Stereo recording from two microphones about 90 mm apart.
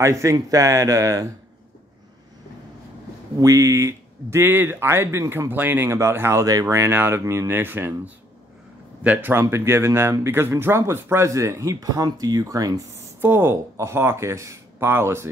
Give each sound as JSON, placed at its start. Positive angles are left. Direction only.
{"t": 0.0, "sound": "speech", "side_deg": -35}
{"t": 3.3, "sound": "speech", "side_deg": -35}
{"t": 5.5, "sound": "speech", "side_deg": -20}
{"t": 13.2, "sound": "speech", "side_deg": -25}